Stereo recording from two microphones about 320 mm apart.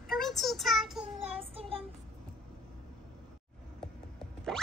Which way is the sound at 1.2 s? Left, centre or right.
Centre.